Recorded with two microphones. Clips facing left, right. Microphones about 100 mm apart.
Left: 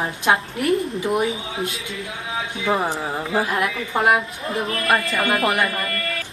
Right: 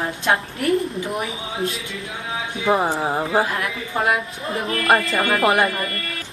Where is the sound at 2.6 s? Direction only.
20° right (ahead or behind).